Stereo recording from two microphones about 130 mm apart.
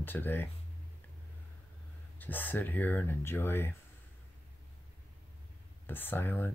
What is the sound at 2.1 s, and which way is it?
Speech, 15° left (ahead or behind).